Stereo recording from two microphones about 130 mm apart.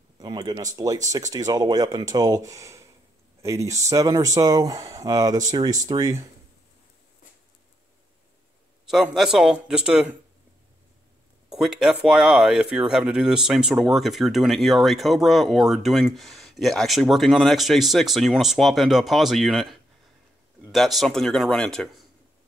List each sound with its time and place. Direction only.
0.2 s speech: 30° right (ahead or behind)
8.8 s speech: centre (ahead or behind)
11.4 s speech: 5° right (ahead or behind)